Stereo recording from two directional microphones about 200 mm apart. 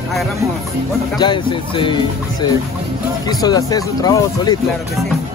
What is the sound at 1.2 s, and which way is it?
Speech, 25° left (ahead or behind).